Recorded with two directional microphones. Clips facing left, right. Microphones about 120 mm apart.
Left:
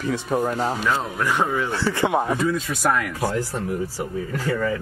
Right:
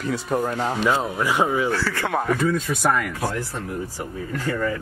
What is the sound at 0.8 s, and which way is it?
Speech, 10° right (ahead or behind).